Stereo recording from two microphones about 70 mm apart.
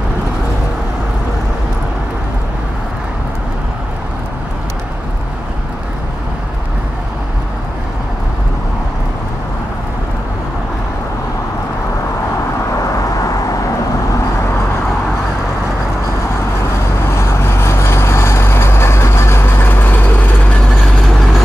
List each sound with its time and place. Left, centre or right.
13.2 s vehicle: left
17.1 s vehicle: left